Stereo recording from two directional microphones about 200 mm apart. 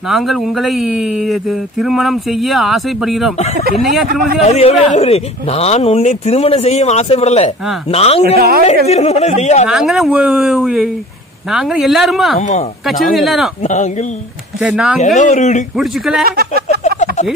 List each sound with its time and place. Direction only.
0.1 s speech: centre (ahead or behind)
4.5 s speech: 30° left (ahead or behind)
8.4 s a woman's voice: 50° right (ahead or behind)
8.8 s speech: 30° left (ahead or behind)
9.7 s speech: centre (ahead or behind)
12.4 s speech: 35° left (ahead or behind)
13.1 s speech: centre (ahead or behind)
13.6 s speech: 35° left (ahead or behind)
14.6 s speech: 5° right (ahead or behind)
15.1 s speech: 35° left (ahead or behind)
15.7 s speech: centre (ahead or behind)
16.3 s speech: 50° right (ahead or behind)